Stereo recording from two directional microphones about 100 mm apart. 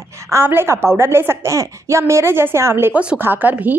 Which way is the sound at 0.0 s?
30° right (ahead or behind).